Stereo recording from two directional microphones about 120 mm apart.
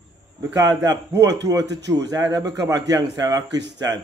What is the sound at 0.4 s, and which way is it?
A man's voice, 25° right (ahead or behind).